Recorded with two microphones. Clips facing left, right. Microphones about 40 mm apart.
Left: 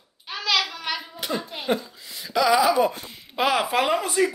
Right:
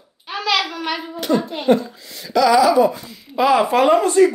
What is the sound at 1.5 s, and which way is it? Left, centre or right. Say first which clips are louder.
Speech: right 8 dB; centre.